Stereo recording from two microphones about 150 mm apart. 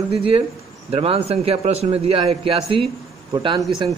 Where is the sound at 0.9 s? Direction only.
40° right (ahead or behind).